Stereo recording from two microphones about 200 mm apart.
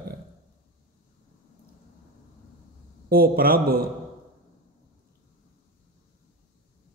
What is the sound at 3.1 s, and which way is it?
Speech, 50° right (ahead or behind).